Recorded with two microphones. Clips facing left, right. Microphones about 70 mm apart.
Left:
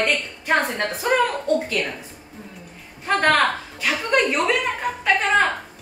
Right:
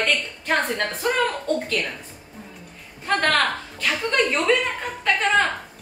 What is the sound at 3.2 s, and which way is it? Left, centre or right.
A woman's voice, centre.